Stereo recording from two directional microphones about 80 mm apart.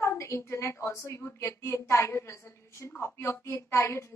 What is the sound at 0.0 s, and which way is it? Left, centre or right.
A woman's voice, left.